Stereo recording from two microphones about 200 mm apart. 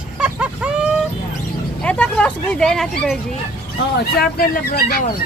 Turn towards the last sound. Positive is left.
turn(degrees=50)  # may be behind; listen again after turning